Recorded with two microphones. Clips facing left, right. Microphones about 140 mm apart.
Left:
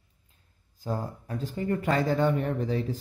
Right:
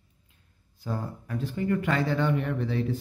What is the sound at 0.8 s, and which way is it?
Speech, 35° left (ahead or behind).